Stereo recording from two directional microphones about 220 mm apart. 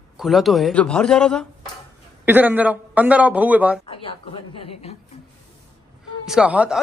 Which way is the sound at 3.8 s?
25° left (ahead or behind).